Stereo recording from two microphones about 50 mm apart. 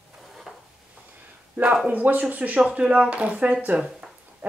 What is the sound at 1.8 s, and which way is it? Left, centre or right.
Speech, right.